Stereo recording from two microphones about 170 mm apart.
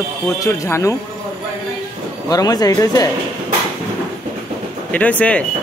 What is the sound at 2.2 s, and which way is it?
Speech, 20° left (ahead or behind).